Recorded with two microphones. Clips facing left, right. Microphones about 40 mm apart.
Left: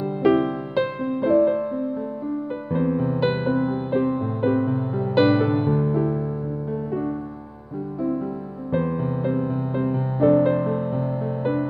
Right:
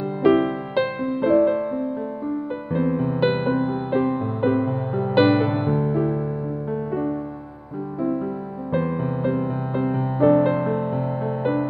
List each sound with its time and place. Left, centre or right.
0.0 s music: right
2.7 s music: right
8.7 s music: right